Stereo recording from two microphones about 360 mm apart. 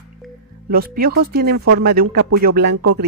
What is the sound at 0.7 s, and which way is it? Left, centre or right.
A woman's voice, right.